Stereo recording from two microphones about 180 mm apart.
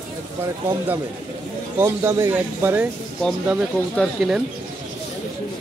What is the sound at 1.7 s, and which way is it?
Speech, 15° right (ahead or behind).